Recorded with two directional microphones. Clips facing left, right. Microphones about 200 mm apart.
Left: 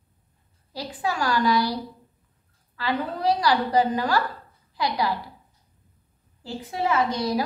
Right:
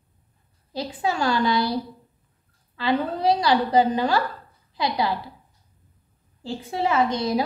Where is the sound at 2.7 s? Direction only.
20° right (ahead or behind).